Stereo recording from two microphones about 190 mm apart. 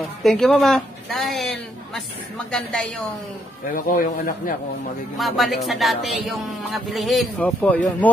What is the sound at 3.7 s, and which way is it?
Speech, 50° left (ahead or behind).